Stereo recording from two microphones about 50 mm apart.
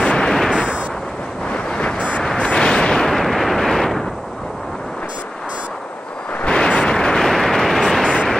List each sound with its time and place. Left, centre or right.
0.0 s gunshot: centre
0.3 s gunshot: centre
1.8 s vehicle: left
2.2 s artillery fire: centre
6.4 s a sound: centre
7.2 s a sound: centre